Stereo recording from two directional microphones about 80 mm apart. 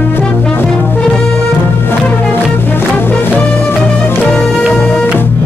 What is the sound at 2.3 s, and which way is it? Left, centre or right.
Music, left.